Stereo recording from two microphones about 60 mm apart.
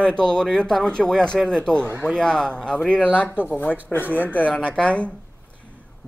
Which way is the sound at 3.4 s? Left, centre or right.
Left.